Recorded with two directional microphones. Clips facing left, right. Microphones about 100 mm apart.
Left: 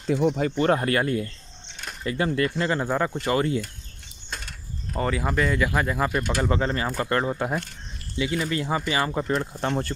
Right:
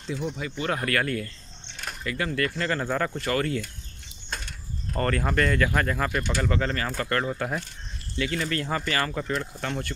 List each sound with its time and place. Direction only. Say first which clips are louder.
0.0 s speech: left 9 dB; 50° left (ahead or behind); by 3.6 s 20° left (ahead or behind)
4.9 s speech: even; 5° left (ahead or behind)
9.3 s speech: left 4 dB; 30° left (ahead or behind)